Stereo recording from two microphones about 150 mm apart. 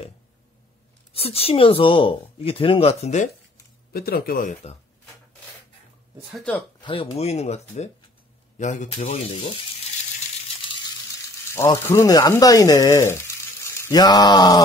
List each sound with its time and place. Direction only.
1.1 s speech: 40° left (ahead or behind)
3.9 s speech: 85° left
6.3 s speech: 5° left (ahead or behind)
6.8 s speech: 35° left (ahead or behind); by 8.9 s 55° left (ahead or behind)
9.0 s speech: 40° left (ahead or behind)
11.5 s speech: 20° left (ahead or behind)